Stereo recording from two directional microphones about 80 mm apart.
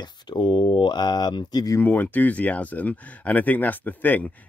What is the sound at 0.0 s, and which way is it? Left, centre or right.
Speech, left.